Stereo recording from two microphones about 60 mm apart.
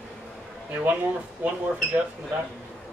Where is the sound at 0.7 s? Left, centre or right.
Right.